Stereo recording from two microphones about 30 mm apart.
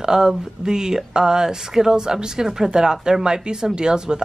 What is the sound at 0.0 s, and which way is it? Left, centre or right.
Speech, right.